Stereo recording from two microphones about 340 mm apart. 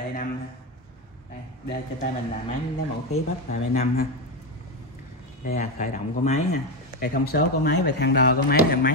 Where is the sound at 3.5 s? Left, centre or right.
Left.